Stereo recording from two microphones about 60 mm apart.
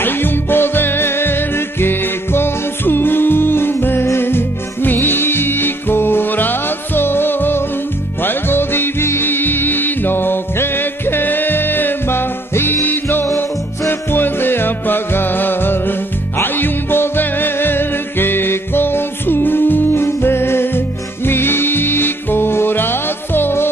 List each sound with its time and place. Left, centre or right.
0.0 s music: left